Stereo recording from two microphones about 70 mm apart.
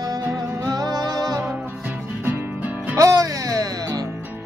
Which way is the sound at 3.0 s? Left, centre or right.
Right.